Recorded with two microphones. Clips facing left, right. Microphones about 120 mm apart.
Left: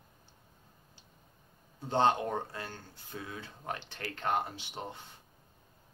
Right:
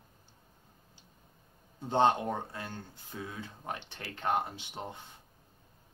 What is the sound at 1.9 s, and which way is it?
Speech, 15° right (ahead or behind).